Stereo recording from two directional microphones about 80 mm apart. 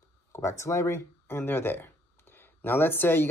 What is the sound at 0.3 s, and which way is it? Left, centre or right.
Speech, left.